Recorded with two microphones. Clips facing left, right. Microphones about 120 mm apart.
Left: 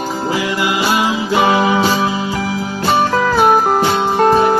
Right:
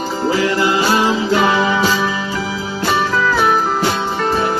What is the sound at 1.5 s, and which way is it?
Music, 35° left (ahead or behind).